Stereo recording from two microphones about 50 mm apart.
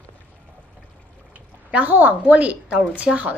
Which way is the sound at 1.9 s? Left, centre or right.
Right.